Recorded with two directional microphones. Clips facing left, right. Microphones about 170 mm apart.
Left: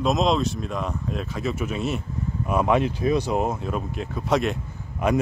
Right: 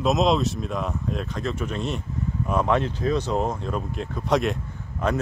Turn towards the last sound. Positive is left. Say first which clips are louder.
# left 2 dB
turn(degrees=10)  # may be behind; listen again after turning